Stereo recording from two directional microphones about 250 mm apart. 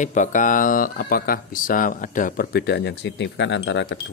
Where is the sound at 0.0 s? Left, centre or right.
Left.